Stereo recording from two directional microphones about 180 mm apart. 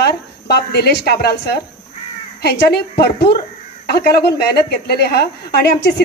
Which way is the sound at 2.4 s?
65° left (ahead or behind).